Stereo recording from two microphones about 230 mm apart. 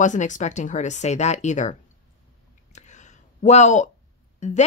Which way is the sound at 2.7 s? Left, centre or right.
Left.